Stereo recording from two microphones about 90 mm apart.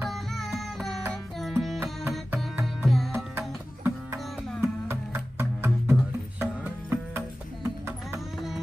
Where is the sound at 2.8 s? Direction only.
Centre (ahead or behind).